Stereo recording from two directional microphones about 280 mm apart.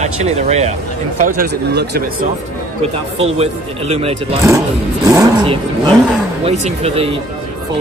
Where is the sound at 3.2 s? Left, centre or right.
Right.